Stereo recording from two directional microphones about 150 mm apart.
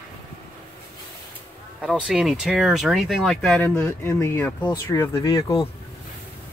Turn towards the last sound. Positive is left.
turn(degrees=25)  # may be behind; listen again after turning